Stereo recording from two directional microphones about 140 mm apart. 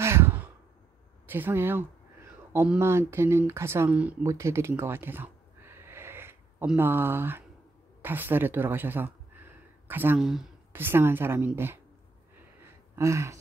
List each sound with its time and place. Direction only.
0.0 s sigh: 15° right (ahead or behind)
1.2 s a sound: 15° right (ahead or behind)
2.8 s speech: 20° right (ahead or behind)
4.3 s a sound: 20° right (ahead or behind)
6.7 s speech: 15° right (ahead or behind)
10.2 s speech: centre (ahead or behind)
10.7 s speech: 15° right (ahead or behind)
12.9 s gasp: 20° right (ahead or behind)